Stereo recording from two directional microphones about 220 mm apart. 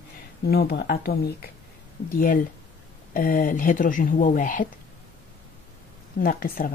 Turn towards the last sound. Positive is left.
turn(degrees=40)  # may be behind; listen again after turning